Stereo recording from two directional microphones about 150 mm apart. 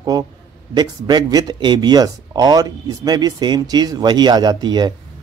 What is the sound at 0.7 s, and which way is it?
Speech, 25° right (ahead or behind).